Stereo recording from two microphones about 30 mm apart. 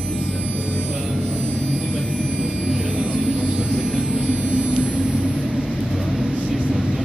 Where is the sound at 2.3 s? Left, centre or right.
Right.